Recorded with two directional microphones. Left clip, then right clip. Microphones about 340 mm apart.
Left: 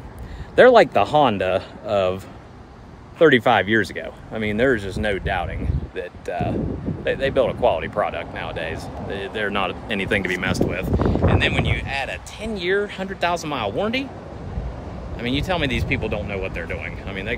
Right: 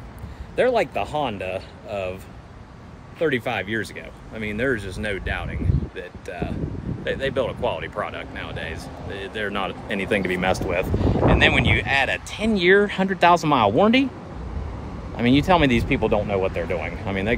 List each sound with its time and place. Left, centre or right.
0.6 s speech: left; by 14.0 s centre
15.1 s speech: centre